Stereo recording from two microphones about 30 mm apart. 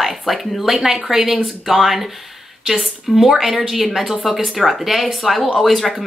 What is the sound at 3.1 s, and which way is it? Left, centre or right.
Speech, centre.